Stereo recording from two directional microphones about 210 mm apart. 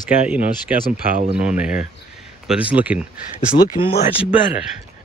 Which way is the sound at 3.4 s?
40° left (ahead or behind).